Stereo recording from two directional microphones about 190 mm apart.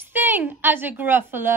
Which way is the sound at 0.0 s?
10° right (ahead or behind).